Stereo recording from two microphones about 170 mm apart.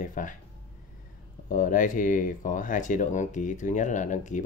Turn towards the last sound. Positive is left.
turn(degrees=50)  # may be behind; listen again after turning